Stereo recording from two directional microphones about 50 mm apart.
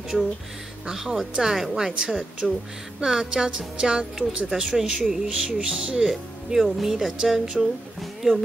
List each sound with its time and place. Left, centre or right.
0.8 s speech: centre; by 4.5 s right
4.5 s speech: centre
6.0 s speech: centre